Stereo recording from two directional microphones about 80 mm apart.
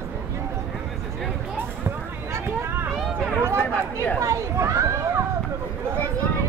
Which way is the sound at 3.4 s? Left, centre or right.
Right.